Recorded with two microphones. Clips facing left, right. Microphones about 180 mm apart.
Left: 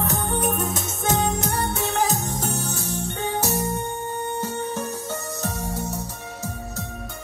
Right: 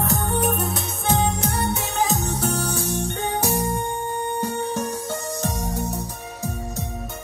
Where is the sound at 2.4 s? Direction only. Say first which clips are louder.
Right 4 dB; 15° right (ahead or behind).